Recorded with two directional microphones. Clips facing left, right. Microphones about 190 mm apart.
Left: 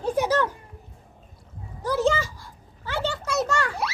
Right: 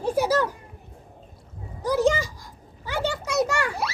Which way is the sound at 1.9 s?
15° right (ahead or behind).